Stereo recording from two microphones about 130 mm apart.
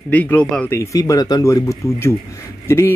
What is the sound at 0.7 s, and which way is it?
A man's voice, 25° left (ahead or behind).